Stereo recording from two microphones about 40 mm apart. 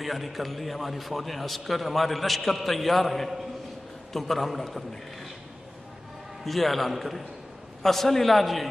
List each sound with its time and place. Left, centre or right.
0.0 s a man's voice: centre
6.4 s a man's voice: centre